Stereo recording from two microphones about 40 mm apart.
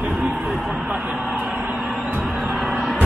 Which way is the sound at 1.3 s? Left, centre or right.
Right.